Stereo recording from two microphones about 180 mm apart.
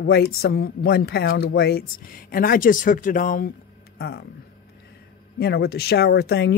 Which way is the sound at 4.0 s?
60° left (ahead or behind).